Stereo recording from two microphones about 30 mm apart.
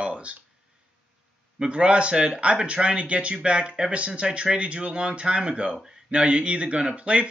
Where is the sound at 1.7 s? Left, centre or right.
Right.